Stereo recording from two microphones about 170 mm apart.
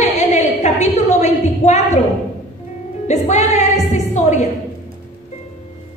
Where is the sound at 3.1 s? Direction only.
40° left (ahead or behind).